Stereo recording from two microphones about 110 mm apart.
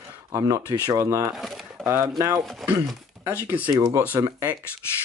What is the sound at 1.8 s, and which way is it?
Speech, 30° right (ahead or behind).